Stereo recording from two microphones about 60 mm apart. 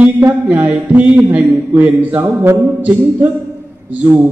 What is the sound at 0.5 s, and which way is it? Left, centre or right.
Speech, right.